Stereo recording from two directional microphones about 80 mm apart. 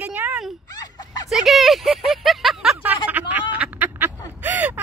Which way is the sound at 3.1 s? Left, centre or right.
Right.